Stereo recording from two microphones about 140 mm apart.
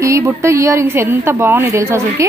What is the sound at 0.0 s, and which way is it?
A woman's voice, 20° right (ahead or behind).